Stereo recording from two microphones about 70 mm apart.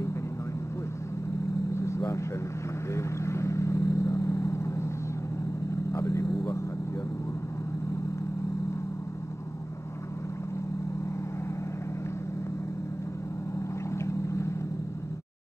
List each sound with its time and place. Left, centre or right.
1.7 s vehicle: left
5.9 s vehicle: left
13.9 s vehicle: left